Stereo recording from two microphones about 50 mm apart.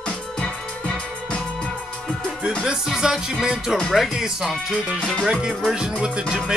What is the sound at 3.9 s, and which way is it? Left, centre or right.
Speech, centre.